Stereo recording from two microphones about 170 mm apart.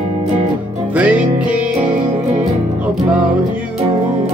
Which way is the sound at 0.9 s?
10° right (ahead or behind).